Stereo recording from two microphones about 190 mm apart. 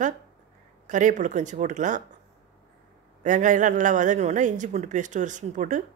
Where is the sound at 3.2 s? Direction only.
40° right (ahead or behind).